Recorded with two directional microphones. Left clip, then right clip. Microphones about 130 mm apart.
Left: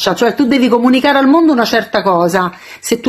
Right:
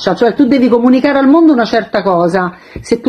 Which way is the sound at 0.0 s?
20° left (ahead or behind).